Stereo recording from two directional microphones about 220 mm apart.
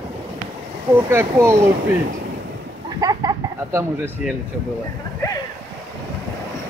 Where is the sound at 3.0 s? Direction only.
15° right (ahead or behind).